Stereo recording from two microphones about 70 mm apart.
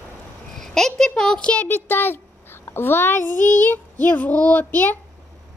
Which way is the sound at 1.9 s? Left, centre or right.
Left.